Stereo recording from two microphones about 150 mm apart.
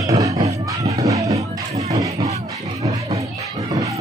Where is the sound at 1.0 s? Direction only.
20° right (ahead or behind).